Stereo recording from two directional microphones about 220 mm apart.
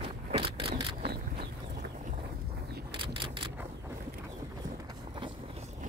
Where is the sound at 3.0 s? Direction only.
25° right (ahead or behind).